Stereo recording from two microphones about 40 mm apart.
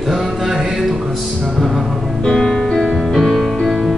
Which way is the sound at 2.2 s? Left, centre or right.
Centre.